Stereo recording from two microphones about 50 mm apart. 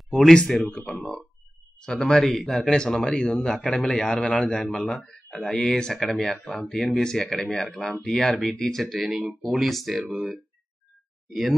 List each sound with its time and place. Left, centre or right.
0.3 s a man's voice: centre
4.6 s speech: centre
10.1 s speech: centre
11.2 s speech: centre